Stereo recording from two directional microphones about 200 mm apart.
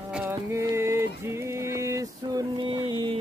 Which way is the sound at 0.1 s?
10° right (ahead or behind).